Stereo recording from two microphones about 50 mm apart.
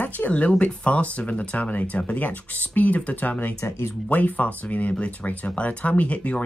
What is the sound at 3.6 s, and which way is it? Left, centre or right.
Speech, left.